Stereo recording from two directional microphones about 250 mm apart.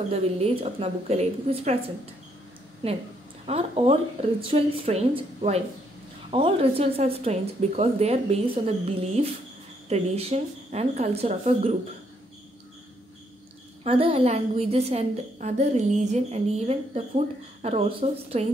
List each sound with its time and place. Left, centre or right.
0.1 s a woman's voice: right
3.4 s a woman's voice: right
13.8 s a woman's voice: right